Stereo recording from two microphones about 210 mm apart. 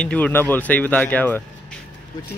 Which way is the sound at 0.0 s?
5° left (ahead or behind).